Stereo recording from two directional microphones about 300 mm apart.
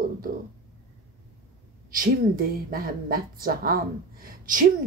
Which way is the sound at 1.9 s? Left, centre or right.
Right.